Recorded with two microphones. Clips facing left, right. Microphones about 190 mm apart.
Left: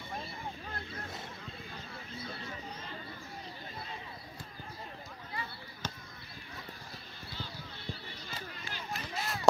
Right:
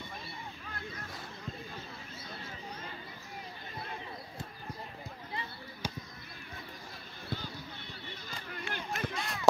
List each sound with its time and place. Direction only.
5.8 s basketball bounce: 10° right (ahead or behind)
8.7 s a sound: 55° right (ahead or behind)
9.1 s run: 5° left (ahead or behind)